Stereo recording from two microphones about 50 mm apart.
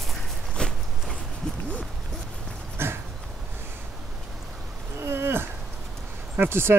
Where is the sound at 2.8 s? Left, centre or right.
Right.